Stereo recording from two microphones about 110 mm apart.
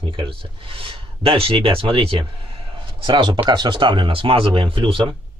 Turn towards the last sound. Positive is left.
turn(degrees=-55)  # may be behind; listen again after turning